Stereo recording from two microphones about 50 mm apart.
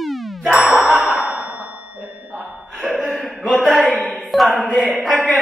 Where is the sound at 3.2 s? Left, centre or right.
Centre.